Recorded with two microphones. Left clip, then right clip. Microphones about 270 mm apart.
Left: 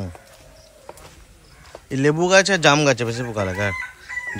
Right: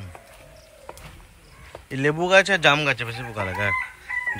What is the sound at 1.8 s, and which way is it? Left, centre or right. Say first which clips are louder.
Speech: left 3 dB; centre.